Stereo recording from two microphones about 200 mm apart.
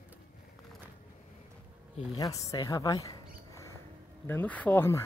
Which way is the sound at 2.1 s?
15° left (ahead or behind).